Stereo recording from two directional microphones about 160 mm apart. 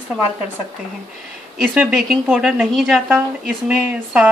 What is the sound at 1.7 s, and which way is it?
A woman's voice, 5° right (ahead or behind).